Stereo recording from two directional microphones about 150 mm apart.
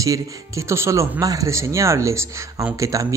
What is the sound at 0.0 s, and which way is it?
Speech, 20° right (ahead or behind).